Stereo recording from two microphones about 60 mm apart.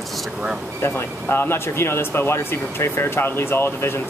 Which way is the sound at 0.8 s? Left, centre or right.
Left.